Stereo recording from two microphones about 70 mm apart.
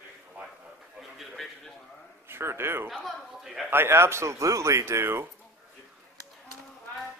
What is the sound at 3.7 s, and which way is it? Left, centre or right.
Speech, right.